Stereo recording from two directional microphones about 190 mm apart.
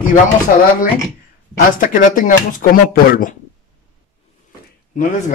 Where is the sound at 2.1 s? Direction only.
45° left (ahead or behind).